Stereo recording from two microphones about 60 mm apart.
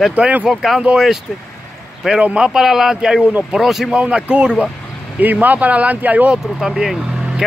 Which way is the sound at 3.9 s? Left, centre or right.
Centre.